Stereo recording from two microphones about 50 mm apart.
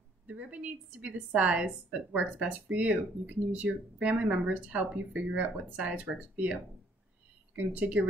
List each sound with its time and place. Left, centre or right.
0.3 s a woman's voice: right